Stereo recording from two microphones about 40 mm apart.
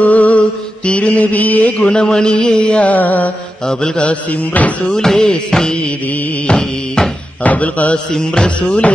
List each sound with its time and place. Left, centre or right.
0.0 s mantra: left
2.8 s music: left
3.6 s music: centre
4.0 s music: left
4.8 s speech: centre
5.3 s music: centre
7.4 s music: left
8.1 s speech: centre
8.5 s music: left